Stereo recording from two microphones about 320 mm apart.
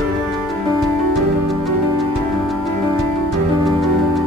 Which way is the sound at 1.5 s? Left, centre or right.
Centre.